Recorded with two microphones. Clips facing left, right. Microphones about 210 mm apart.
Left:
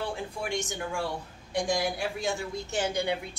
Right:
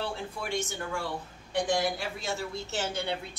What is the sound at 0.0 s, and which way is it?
Speech, 15° left (ahead or behind).